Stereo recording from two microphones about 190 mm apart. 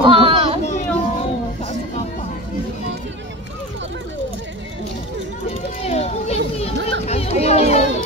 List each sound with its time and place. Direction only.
0.0 s children playing: 25° right (ahead or behind)
0.7 s children playing: 40° left (ahead or behind)
5.8 s children playing: 35° left (ahead or behind)
6.6 s a sound: 35° left (ahead or behind)